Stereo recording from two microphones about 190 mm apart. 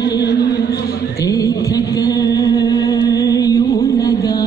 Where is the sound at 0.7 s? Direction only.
60° left (ahead or behind).